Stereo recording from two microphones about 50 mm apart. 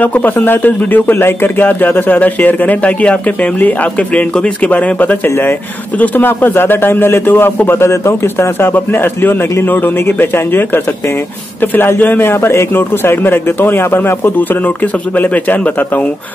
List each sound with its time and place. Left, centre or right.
0.0 s a man's voice: left
1.1 s a man's voice: left
7.9 s speech: left
8.7 s a man's voice: left
12.2 s speech: left